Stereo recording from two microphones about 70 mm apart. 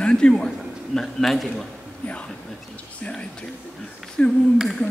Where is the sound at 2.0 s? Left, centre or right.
Centre.